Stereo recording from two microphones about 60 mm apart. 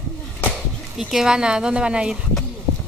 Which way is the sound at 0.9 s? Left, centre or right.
Centre.